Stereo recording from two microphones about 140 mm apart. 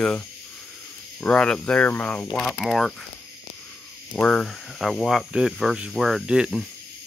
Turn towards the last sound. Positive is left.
turn(degrees=-5)  # may be behind; listen again after turning